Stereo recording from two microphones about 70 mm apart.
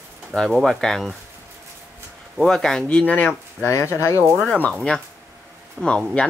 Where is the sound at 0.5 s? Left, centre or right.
Centre.